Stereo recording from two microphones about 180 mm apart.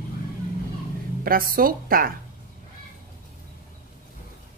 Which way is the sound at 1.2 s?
55° right (ahead or behind).